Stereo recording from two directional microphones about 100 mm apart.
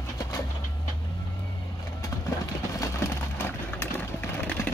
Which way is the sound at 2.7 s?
30° left (ahead or behind).